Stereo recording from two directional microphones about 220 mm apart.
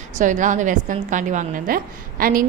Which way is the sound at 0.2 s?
35° right (ahead or behind).